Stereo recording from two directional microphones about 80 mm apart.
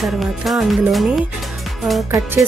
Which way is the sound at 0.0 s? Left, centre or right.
Centre.